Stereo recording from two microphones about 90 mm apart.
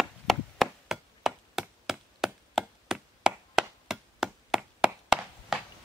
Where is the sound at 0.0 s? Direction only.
Centre (ahead or behind).